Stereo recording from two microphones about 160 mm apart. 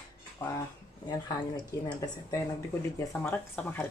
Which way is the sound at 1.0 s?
25° left (ahead or behind).